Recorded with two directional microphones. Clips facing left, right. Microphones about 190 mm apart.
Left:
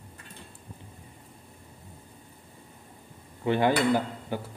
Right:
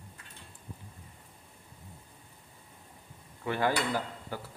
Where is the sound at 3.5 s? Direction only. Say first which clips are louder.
Left 7 dB; 20° left (ahead or behind).